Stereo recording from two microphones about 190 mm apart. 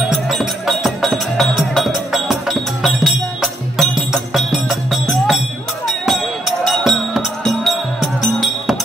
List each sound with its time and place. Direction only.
0.1 s music: centre (ahead or behind)